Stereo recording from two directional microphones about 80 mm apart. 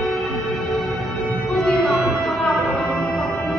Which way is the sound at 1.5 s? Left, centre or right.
Centre.